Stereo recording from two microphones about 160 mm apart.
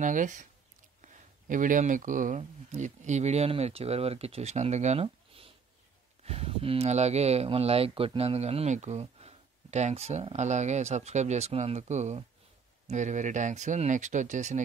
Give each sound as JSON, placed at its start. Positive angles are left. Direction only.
{"t": 0.0, "sound": "speech", "side_deg": -50}